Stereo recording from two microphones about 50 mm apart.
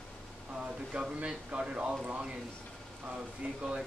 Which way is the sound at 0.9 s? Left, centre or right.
Right.